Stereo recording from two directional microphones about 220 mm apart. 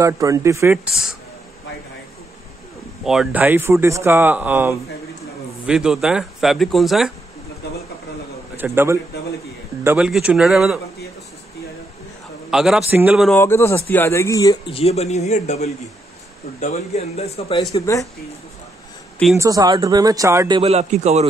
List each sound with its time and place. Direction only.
0.0 s speech: 15° right (ahead or behind)
3.0 s speech: centre (ahead or behind)
8.5 s speech: 10° right (ahead or behind)
12.4 s speech: centre (ahead or behind)
13.4 s a man's voice: 10° left (ahead or behind)
19.3 s speech: 15° right (ahead or behind); by 21.3 s 30° right (ahead or behind)